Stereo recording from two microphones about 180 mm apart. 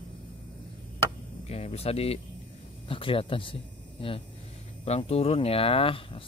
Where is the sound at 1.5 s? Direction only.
35° left (ahead or behind).